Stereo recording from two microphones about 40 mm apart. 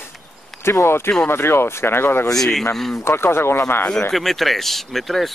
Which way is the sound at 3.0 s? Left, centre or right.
Left.